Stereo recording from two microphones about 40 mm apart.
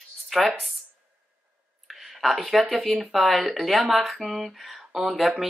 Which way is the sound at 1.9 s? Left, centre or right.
Centre.